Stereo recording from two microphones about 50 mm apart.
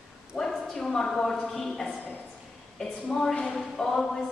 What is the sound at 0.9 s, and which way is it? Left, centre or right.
A woman's voice, centre.